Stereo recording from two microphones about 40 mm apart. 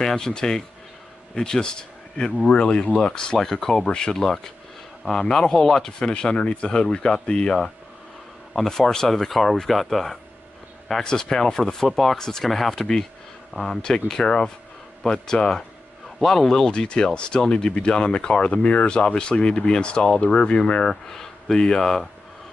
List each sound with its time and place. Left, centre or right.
0.0 s speech: centre
8.5 s speech: centre
11.9 s speech: centre
12.2 s speech: centre
12.4 s speech: centre
13.8 s speech: centre
18.5 s speech: left; by 22.1 s centre